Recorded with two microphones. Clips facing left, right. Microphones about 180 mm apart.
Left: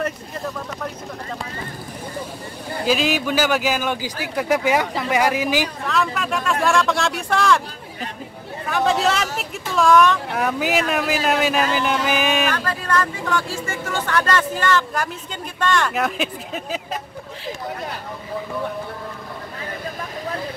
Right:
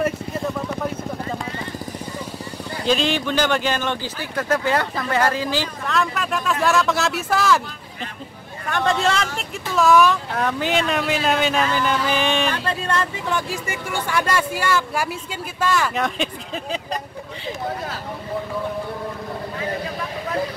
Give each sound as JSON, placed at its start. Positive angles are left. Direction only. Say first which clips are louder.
{"t": 2.8, "sound": "a man's voice", "louder": "even", "side_deg": 5}
{"t": 5.9, "sound": "speech", "louder": "even", "side_deg": 0}
{"t": 8.6, "sound": "speech", "louder": "left 1 dB", "side_deg": 0}
{"t": 10.3, "sound": "speech", "louder": "left 1 dB", "side_deg": 5}
{"t": 12.5, "sound": "speech", "louder": "left 1 dB", "side_deg": -25}